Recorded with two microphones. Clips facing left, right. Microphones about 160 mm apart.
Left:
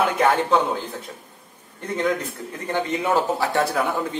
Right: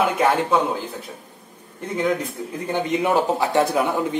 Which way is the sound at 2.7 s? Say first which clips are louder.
Right 1 dB; 20° right (ahead or behind).